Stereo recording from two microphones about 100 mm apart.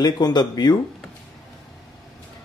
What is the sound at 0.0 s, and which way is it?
Speech, 45° left (ahead or behind).